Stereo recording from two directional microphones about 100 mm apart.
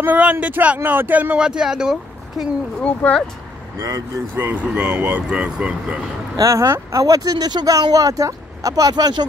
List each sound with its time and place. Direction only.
0.0 s speech: 15° right (ahead or behind)
2.8 s speech: 10° left (ahead or behind)
4.4 s speech: 20° right (ahead or behind)
6.3 s speech: 35° right (ahead or behind)